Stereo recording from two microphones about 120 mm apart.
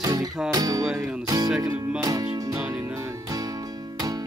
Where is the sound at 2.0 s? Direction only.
30° right (ahead or behind).